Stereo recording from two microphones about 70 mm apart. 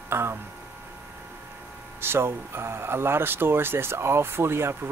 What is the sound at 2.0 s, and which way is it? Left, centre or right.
Speech, right.